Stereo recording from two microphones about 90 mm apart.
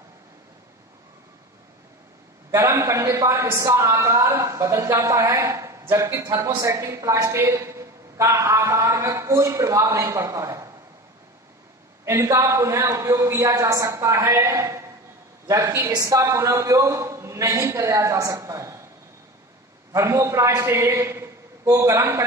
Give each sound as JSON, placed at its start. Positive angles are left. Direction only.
{"t": 2.5, "sound": "a woman's voice", "side_deg": -35}
{"t": 5.2, "sound": "a sound", "side_deg": -35}
{"t": 6.0, "sound": "a woman's voice", "side_deg": -30}
{"t": 12.0, "sound": "a woman's voice", "side_deg": -30}
{"t": 15.9, "sound": "a woman's voice", "side_deg": -40}
{"t": 19.9, "sound": "a man's voice", "side_deg": -35}